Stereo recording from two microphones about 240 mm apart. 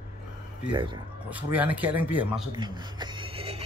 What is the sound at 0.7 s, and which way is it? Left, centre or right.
Speech, centre.